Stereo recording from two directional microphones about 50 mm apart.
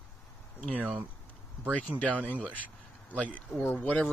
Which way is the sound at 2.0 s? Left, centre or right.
Left.